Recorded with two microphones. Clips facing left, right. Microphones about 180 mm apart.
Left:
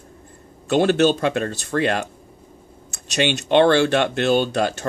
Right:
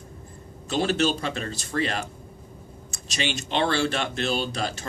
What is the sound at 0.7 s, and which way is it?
Speech, 60° left (ahead or behind).